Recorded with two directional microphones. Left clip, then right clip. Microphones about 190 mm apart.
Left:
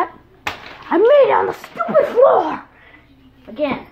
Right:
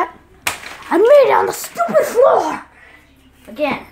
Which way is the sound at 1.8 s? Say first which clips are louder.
Even; 5° right (ahead or behind).